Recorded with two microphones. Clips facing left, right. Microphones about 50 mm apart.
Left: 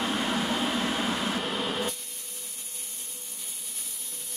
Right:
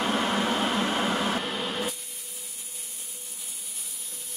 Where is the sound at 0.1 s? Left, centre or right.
Right.